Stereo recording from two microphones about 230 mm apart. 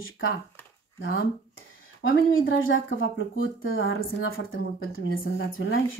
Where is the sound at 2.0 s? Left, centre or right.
Left.